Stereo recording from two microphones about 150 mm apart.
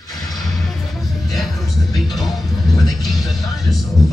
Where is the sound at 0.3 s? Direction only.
Centre (ahead or behind).